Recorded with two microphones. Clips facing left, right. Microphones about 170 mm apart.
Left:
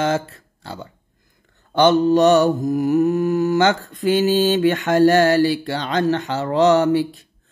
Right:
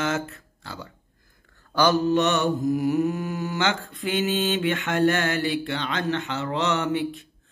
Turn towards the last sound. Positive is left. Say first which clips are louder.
# left 10 dB
turn(degrees=35)  # may be behind; listen again after turning